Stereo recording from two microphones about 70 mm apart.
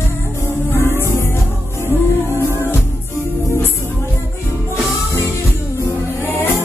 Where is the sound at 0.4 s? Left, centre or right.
Left.